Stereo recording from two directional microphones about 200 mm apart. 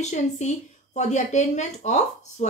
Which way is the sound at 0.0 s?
35° left (ahead or behind).